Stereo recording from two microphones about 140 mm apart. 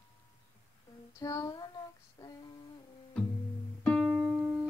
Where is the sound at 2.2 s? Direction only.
25° left (ahead or behind).